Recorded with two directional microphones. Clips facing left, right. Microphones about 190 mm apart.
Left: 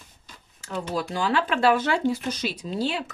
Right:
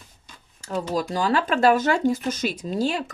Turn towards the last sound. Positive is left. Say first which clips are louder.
# right 3 dB
turn(degrees=-45)  # may be behind; listen again after turning